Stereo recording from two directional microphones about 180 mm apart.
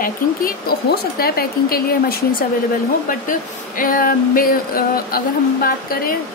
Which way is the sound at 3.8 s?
50° left (ahead or behind).